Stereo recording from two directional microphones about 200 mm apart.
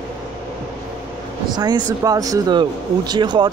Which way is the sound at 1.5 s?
20° right (ahead or behind).